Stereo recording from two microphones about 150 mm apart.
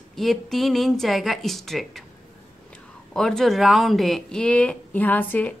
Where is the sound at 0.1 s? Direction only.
Centre (ahead or behind).